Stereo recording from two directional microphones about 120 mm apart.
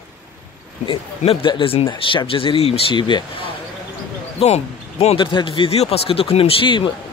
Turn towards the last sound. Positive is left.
turn(degrees=45)  # may be behind; listen again after turning